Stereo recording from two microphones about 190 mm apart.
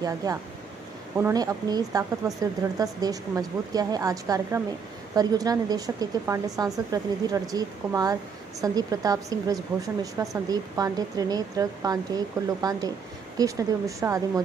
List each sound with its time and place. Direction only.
0.0 s speech: 20° right (ahead or behind)